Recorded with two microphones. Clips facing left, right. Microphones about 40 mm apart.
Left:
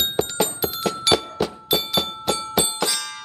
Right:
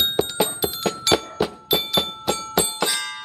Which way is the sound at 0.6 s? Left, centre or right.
Centre.